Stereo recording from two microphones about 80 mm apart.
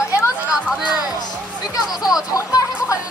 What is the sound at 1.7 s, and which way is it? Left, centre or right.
Speech, left.